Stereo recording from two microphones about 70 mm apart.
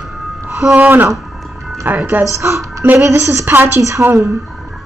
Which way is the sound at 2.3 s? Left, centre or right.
Right.